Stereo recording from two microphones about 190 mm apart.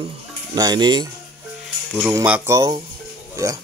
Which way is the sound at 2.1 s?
10° right (ahead or behind).